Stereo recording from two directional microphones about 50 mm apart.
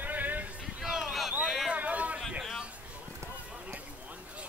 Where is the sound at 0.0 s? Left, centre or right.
Right.